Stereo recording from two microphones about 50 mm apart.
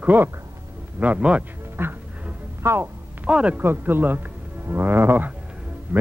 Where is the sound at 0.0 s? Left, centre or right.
Right.